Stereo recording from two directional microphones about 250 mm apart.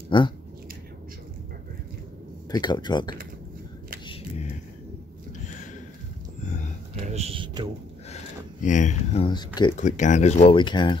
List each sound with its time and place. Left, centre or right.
0.1 s speech: centre
2.5 s speech: centre
7.0 s a sound: right
8.6 s speech: left
9.8 s speech: left